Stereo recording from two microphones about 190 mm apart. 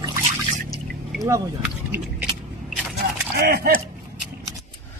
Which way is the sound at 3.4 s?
55° right (ahead or behind).